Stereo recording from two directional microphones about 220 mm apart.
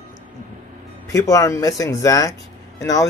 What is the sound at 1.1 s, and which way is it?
Speech, 15° left (ahead or behind).